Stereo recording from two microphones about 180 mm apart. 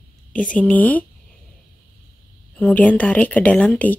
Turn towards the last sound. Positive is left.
turn(degrees=10)  # may be behind; listen again after turning